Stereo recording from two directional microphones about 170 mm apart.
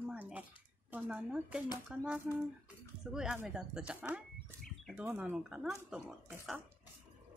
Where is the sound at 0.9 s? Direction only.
5° right (ahead or behind).